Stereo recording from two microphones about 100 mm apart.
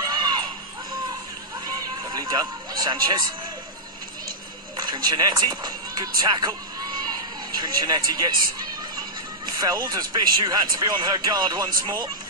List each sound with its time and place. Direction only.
0.0 s a sound: 45° right (ahead or behind)
2.0 s speech: 40° right (ahead or behind)
4.7 s speech: 50° right (ahead or behind)
9.6 s speech: 40° right (ahead or behind)